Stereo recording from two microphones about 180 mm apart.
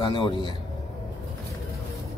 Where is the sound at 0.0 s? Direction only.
25° left (ahead or behind).